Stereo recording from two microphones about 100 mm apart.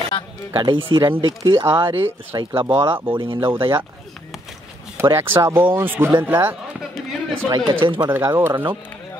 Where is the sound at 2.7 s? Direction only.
55° right (ahead or behind).